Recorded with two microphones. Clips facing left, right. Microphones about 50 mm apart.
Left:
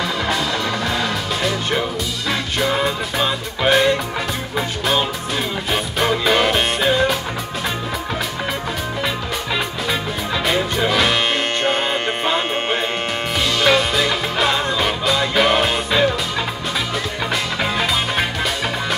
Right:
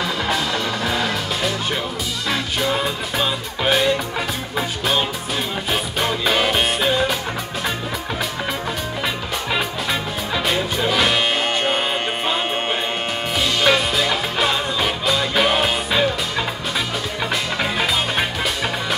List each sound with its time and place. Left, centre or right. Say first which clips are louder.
0.3 s music: left 1 dB; centre
9.0 s music: left 1 dB; centre